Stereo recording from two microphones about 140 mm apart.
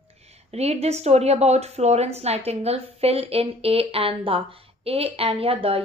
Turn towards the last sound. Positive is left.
turn(degrees=-45)  # may be behind; listen again after turning